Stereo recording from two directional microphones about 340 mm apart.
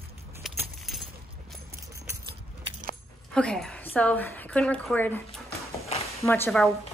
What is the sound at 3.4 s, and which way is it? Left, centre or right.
A woman's voice, centre.